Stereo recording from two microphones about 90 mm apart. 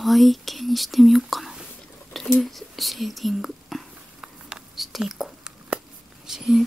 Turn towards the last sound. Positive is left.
turn(degrees=-5)  # may be behind; listen again after turning